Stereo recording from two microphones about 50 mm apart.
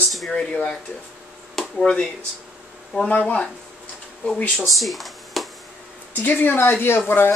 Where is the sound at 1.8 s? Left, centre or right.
Centre.